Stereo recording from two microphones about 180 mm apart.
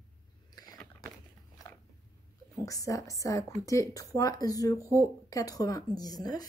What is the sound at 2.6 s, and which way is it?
A woman's voice, 20° left (ahead or behind).